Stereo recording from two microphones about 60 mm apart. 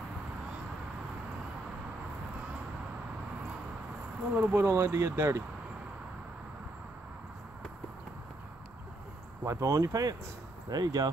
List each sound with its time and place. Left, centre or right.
4.4 s speech: right
9.4 s speech: right
10.8 s speech: right